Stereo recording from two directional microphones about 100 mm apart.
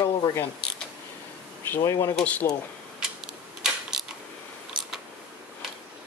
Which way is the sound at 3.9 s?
5° right (ahead or behind).